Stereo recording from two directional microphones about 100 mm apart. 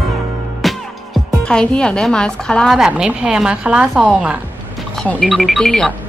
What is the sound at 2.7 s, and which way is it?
A woman's voice, 5° right (ahead or behind).